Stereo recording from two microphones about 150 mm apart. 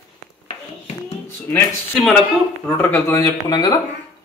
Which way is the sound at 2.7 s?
20° left (ahead or behind).